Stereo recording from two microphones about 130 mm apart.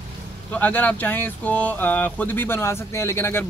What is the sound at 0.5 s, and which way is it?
Speech, 10° left (ahead or behind).